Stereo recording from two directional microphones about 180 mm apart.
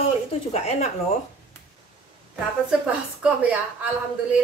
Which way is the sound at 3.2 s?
10° right (ahead or behind).